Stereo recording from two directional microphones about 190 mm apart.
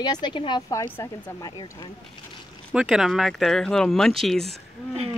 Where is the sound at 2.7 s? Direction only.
5° right (ahead or behind).